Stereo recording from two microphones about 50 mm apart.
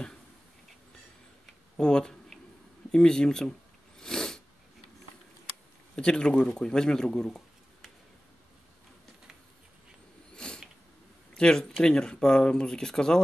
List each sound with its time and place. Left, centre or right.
1.8 s speech: centre
4.0 s sneeze: centre
5.9 s speech: centre
10.3 s a sound: centre
11.3 s speech: centre